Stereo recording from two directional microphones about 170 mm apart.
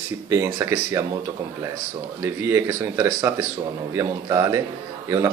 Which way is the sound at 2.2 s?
15° right (ahead or behind).